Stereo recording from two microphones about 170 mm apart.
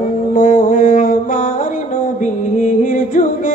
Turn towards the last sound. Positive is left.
turn(degrees=50)  # may be behind; listen again after turning